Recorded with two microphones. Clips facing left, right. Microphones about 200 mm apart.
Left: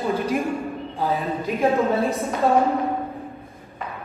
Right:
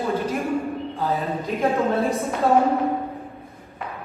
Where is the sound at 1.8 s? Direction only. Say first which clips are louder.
Even; centre (ahead or behind).